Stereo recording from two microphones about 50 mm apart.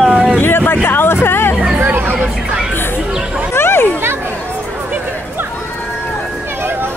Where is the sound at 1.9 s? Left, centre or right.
Right.